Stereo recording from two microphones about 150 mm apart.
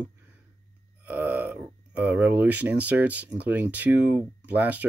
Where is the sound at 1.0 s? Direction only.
10° right (ahead or behind).